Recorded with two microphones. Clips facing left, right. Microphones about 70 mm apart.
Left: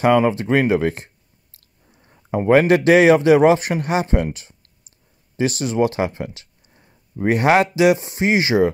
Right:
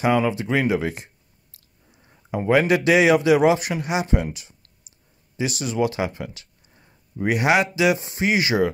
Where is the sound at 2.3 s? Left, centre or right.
Left.